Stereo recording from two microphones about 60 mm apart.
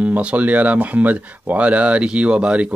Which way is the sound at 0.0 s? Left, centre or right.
Right.